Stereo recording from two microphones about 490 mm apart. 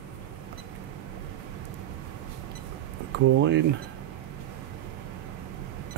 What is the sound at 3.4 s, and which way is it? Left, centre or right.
Speech, right.